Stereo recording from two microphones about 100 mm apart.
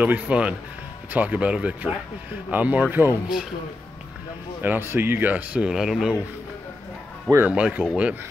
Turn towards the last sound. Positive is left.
turn(degrees=-10)  # may be behind; listen again after turning